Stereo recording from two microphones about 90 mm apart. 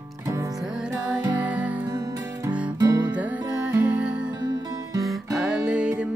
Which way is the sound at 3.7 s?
15° right (ahead or behind).